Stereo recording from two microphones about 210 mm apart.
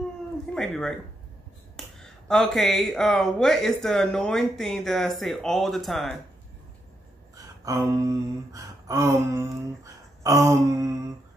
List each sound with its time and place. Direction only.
0.6 s speech: 5° left (ahead or behind)
2.0 s speech: centre (ahead or behind)
7.3 s a sound: 15° right (ahead or behind)